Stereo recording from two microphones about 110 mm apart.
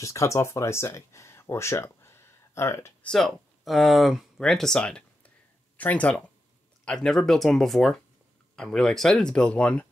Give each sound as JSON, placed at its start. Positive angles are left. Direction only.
{"t": 0.0, "sound": "speech", "side_deg": 30}
{"t": 3.0, "sound": "speech", "side_deg": 5}